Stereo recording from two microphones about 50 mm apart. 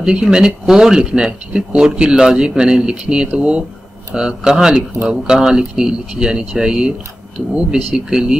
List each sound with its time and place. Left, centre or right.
0.0 s speech: centre